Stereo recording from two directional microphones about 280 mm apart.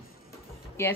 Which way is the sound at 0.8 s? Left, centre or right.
Centre.